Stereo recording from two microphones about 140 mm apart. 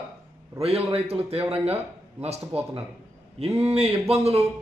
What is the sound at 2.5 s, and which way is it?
Speech, 10° right (ahead or behind).